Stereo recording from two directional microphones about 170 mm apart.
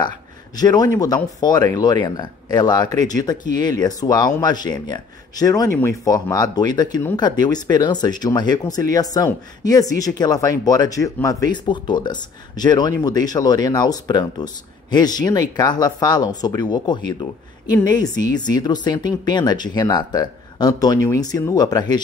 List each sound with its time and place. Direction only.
0.6 s speech: 25° left (ahead or behind)